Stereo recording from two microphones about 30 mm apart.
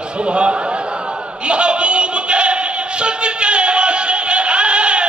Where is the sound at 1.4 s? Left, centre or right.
Right.